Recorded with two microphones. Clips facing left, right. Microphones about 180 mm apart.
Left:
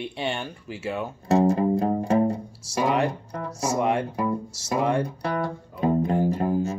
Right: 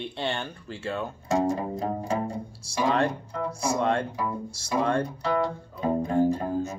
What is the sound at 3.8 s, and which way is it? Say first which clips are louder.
Speech: left 3 dB; 15° left (ahead or behind).